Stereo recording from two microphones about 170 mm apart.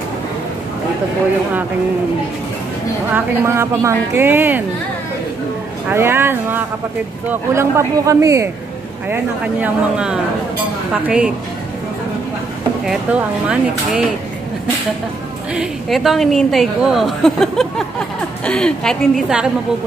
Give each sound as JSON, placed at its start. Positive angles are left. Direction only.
{"t": 3.1, "sound": "speech", "side_deg": -10}
{"t": 5.9, "sound": "speech", "side_deg": -15}
{"t": 9.1, "sound": "a woman's voice", "side_deg": -10}
{"t": 12.8, "sound": "a woman's voice", "side_deg": -5}
{"t": 15.5, "sound": "a woman's voice", "side_deg": 0}